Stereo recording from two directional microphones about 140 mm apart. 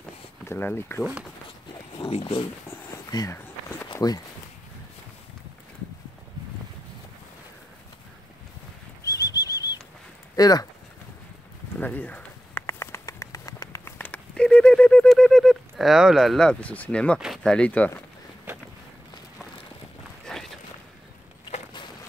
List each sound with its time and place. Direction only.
0.5 s speech: 15° left (ahead or behind)
2.0 s speech: 40° left (ahead or behind)
3.1 s speech: 25° left (ahead or behind)
3.9 s walk: 30° left (ahead or behind)
9.0 s bird flight: 25° left (ahead or behind)
10.3 s speech: 25° left (ahead or behind)
11.8 s a sound: 10° left (ahead or behind)
17.2 s speech: 5° left (ahead or behind)
20.2 s a sound: 5° left (ahead or behind)